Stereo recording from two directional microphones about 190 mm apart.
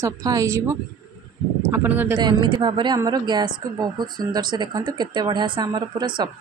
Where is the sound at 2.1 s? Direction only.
25° right (ahead or behind).